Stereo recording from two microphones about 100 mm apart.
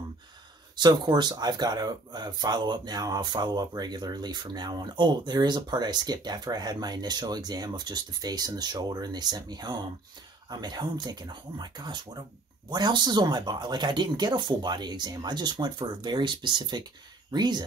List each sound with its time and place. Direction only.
0.7 s speech: 45° right (ahead or behind)